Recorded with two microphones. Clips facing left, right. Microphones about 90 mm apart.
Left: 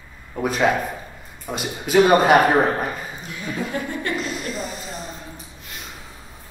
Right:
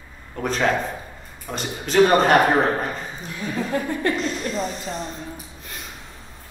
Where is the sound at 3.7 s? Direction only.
40° right (ahead or behind).